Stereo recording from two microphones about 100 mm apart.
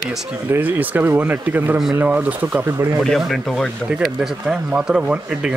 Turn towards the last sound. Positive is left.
turn(degrees=-10)  # may be behind; listen again after turning